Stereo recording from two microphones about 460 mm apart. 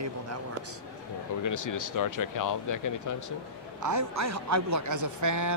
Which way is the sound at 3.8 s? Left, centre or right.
Right.